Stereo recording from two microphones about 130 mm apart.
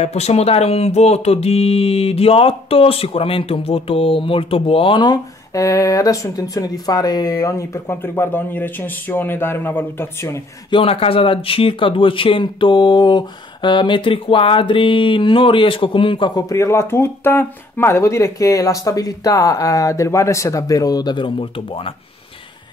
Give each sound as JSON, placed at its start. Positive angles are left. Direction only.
{"t": 0.0, "sound": "speech", "side_deg": 55}
{"t": 10.7, "sound": "speech", "side_deg": 45}